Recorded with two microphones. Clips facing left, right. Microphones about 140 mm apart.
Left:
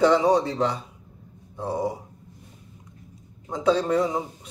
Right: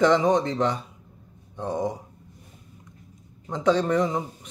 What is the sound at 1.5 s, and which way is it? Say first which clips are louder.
Speech: even; 5° left (ahead or behind).